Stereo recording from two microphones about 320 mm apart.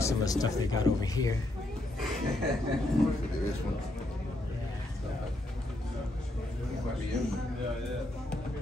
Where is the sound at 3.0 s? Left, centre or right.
Centre.